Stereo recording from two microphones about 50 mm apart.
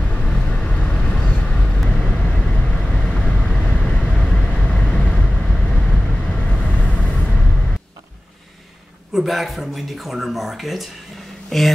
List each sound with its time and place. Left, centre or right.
0.1 s vehicle: left
9.1 s speech: centre
11.5 s speech: centre